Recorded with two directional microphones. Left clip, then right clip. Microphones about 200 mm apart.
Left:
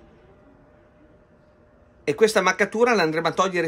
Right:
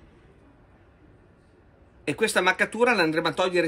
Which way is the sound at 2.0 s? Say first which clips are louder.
Left 5 dB; 35° left (ahead or behind).